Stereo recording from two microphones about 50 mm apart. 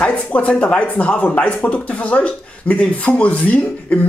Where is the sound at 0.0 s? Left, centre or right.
Left.